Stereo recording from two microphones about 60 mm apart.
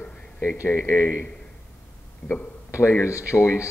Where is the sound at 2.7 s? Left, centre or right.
Left.